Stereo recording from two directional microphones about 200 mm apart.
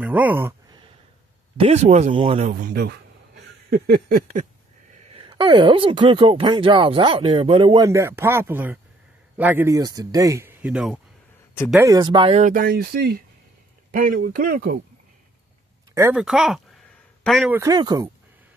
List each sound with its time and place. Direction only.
0.0 s a sound: 10° right (ahead or behind)
1.6 s speech: 35° right (ahead or behind)
2.5 s speech: 50° right (ahead or behind)
5.1 s speech: 20° right (ahead or behind); by 11.0 s 5° right (ahead or behind)
11.7 s speech: 15° right (ahead or behind); by 14.8 s 45° right (ahead or behind)
15.9 s speech: 15° right (ahead or behind)
16.2 s a sound: centre (ahead or behind)
17.5 s speech: 15° right (ahead or behind)